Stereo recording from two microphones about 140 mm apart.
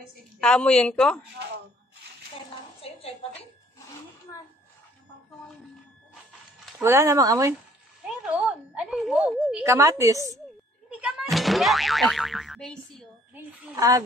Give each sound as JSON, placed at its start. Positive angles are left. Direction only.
{"t": 0.4, "sound": "a woman's voice", "side_deg": 5}
{"t": 2.8, "sound": "a sound", "side_deg": 45}
{"t": 6.8, "sound": "speech", "side_deg": -20}
{"t": 8.3, "sound": "a sound", "side_deg": -10}
{"t": 9.7, "sound": "speech", "side_deg": -20}
{"t": 10.9, "sound": "boing", "side_deg": -10}
{"t": 13.3, "sound": "speech", "side_deg": -15}